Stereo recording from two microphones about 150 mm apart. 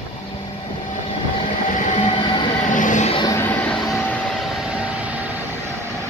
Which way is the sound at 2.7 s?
60° left (ahead or behind).